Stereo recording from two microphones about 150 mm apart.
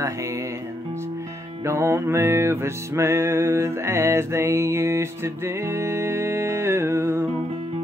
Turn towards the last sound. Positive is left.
turn(degrees=-15)  # may be behind; listen again after turning